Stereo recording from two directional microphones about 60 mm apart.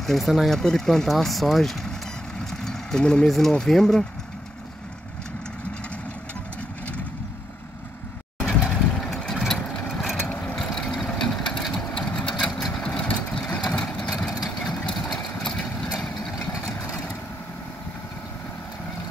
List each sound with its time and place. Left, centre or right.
0.0 s speech: centre
2.6 s vehicle: centre
3.3 s speech: centre
8.6 s vehicle: centre
11.7 s sewing machine: centre
12.6 s vehicle: centre
12.9 s vehicle: centre
14.6 s engine: centre
15.8 s vehicle: centre